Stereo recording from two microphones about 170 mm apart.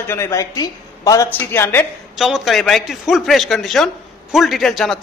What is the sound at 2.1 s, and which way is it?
A man's voice, centre (ahead or behind).